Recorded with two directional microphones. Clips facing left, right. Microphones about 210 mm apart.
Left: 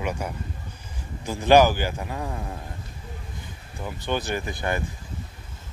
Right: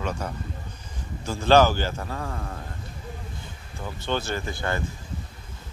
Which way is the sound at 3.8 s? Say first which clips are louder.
Left 1 dB; 15° left (ahead or behind).